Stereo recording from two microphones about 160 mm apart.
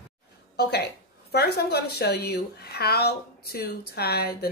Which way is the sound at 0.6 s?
90° left.